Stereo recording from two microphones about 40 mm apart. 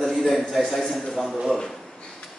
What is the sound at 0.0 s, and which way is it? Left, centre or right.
A man's voice, centre.